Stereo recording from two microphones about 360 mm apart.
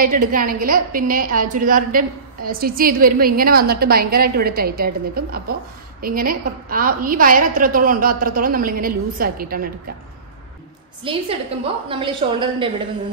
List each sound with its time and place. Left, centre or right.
0.0 s a woman's voice: right
11.1 s a woman's voice: centre